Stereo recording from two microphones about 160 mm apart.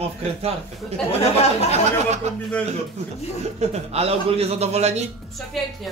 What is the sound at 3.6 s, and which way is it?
A man's voice, 40° right (ahead or behind).